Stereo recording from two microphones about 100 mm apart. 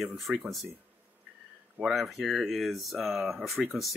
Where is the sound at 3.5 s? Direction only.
15° right (ahead or behind).